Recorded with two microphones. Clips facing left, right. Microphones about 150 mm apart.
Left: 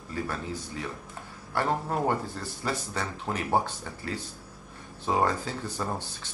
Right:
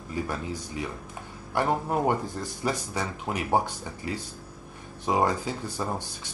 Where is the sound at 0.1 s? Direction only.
15° right (ahead or behind).